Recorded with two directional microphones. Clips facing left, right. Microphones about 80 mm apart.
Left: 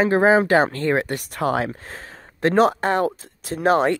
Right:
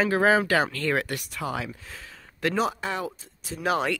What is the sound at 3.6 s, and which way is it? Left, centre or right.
Speech, left.